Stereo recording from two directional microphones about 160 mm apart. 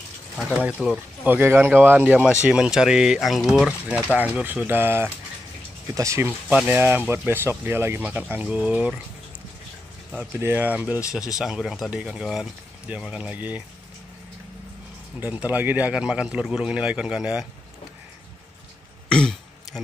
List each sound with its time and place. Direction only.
0.4 s speech: 5° right (ahead or behind)
10.1 s speech: 10° right (ahead or behind)
15.1 s speech: 10° right (ahead or behind)
19.0 s throat clearing: 5° left (ahead or behind)